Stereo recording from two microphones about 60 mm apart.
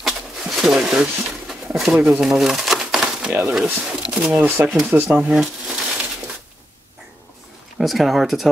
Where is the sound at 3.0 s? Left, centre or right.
Centre.